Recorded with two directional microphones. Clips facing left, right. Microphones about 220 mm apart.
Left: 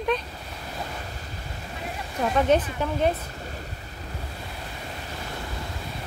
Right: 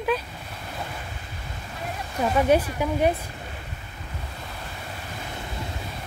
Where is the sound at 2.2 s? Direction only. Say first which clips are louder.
Right 1 dB; 10° right (ahead or behind).